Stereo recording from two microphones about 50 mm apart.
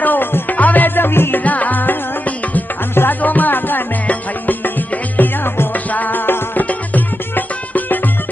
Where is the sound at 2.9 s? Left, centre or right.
Left.